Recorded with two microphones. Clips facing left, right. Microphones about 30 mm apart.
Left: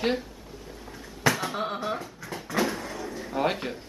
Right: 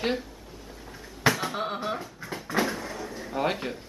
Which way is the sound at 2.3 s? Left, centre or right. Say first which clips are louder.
Even; centre.